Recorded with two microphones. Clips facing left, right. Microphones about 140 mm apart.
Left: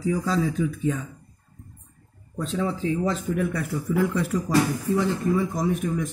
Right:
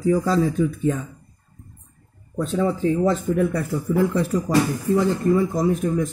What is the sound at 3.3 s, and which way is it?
Speech, 30° right (ahead or behind).